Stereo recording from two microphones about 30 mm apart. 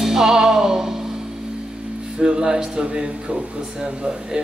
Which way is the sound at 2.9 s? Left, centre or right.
Right.